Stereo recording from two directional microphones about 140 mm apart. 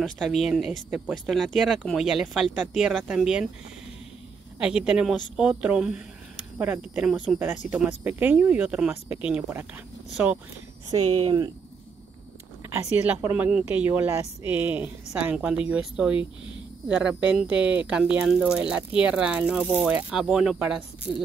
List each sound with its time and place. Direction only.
0.0 s speech: centre (ahead or behind)
4.6 s speech: 5° right (ahead or behind)
10.9 s speech: 30° right (ahead or behind)
12.9 s speech: 10° right (ahead or behind)